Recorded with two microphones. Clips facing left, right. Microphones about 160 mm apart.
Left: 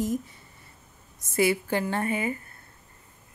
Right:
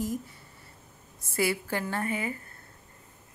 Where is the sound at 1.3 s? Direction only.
20° left (ahead or behind).